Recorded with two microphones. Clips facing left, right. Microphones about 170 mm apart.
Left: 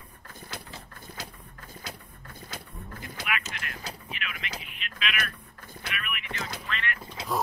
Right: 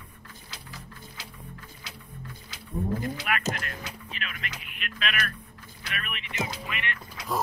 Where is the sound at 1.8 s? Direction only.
50° left (ahead or behind).